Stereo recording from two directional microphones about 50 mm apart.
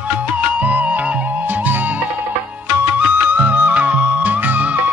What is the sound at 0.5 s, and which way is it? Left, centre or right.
Music, right.